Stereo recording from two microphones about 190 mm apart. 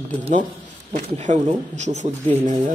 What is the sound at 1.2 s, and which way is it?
Speech, 40° right (ahead or behind).